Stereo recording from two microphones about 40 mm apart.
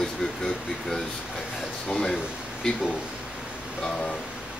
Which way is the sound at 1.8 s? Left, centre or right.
Centre.